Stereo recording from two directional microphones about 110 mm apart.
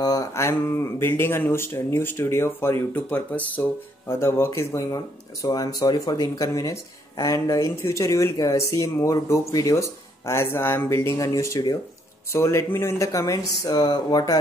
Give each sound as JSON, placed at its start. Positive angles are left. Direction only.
{"t": 0.0, "sound": "speech", "side_deg": 35}